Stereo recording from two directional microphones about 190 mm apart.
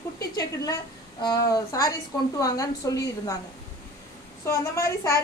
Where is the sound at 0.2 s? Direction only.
20° left (ahead or behind).